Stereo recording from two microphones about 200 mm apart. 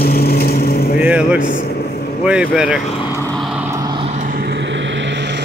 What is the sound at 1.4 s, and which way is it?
Speech, 45° left (ahead or behind).